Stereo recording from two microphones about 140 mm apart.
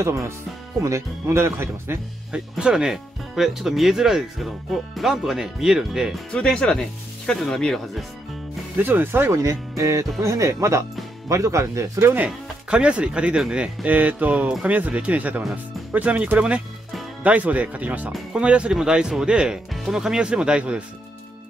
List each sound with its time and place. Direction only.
0.0 s speech: 20° right (ahead or behind)
2.3 s speech: 5° right (ahead or behind)
6.3 s speech: 5° left (ahead or behind)
8.7 s speech: 15° right (ahead or behind)